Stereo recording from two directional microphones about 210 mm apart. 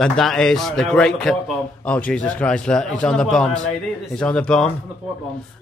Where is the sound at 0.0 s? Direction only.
Centre (ahead or behind).